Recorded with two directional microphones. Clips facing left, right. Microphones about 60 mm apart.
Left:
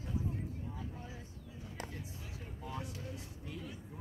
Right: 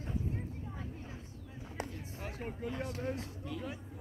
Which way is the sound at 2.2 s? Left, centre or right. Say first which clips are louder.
Right 8 dB; right.